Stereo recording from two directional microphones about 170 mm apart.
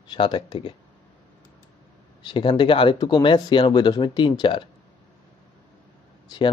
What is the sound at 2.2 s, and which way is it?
Speech, 30° left (ahead or behind).